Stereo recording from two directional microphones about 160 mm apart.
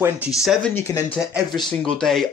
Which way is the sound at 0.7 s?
15° left (ahead or behind).